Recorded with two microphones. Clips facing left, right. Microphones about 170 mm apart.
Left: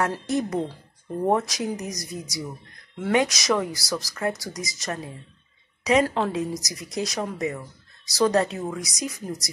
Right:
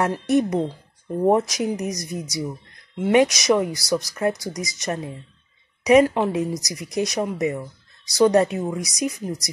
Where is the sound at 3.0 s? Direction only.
20° right (ahead or behind).